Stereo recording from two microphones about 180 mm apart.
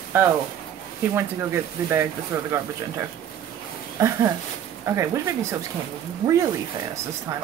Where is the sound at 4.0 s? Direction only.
15° right (ahead or behind).